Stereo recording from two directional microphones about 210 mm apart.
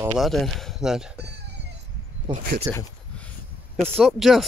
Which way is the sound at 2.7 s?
10° left (ahead or behind).